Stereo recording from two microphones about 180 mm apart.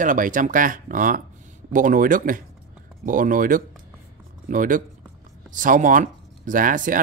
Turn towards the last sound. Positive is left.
turn(degrees=-50)  # may be behind; listen again after turning